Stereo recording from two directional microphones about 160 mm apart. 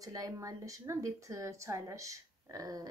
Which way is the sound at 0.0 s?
20° right (ahead or behind).